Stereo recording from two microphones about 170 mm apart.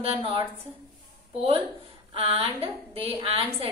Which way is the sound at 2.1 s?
35° right (ahead or behind).